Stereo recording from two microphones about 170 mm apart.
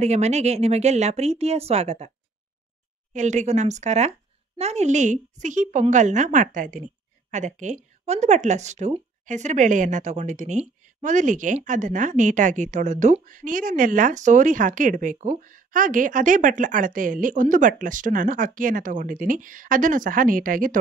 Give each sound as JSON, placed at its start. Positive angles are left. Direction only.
{"t": 0.0, "sound": "a woman's voice", "side_deg": -40}